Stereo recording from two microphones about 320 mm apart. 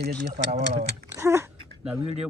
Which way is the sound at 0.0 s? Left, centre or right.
Right.